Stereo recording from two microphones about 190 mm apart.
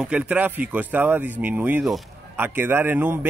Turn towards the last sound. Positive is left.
turn(degrees=-10)  # may be behind; listen again after turning